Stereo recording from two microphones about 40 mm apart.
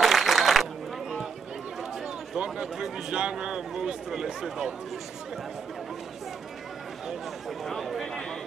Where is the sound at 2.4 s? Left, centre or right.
Centre.